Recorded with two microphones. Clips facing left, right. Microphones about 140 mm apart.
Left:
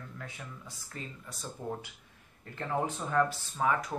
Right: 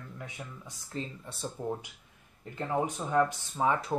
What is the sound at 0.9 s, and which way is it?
Speech, 30° right (ahead or behind).